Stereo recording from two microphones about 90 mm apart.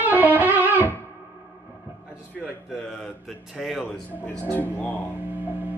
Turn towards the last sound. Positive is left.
turn(degrees=20)  # may be behind; listen again after turning